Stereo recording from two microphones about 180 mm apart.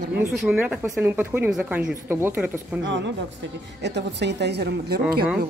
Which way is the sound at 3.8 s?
70° right (ahead or behind).